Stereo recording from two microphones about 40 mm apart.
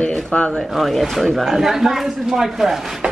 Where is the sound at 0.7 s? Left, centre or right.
Centre.